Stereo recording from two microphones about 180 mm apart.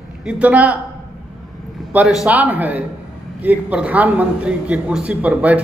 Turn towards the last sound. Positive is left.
turn(degrees=-10)  # may be behind; listen again after turning